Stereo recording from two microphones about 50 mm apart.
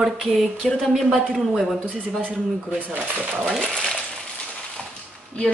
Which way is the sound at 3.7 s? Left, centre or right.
Centre.